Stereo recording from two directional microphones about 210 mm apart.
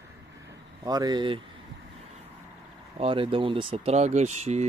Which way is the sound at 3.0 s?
25° right (ahead or behind).